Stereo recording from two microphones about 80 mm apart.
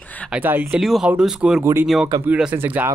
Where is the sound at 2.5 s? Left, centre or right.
Right.